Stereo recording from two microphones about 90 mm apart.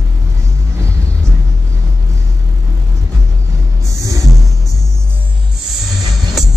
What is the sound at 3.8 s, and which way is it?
Music, 35° right (ahead or behind).